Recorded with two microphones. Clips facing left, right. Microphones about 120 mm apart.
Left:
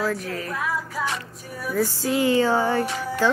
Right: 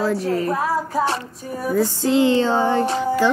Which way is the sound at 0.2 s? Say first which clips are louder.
Right 8 dB; 35° right (ahead or behind).